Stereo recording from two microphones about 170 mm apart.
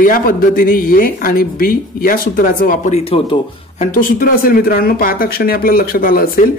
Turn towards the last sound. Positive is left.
turn(degrees=60)  # may be behind; listen again after turning